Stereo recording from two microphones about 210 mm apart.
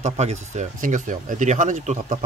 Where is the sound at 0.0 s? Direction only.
35° right (ahead or behind).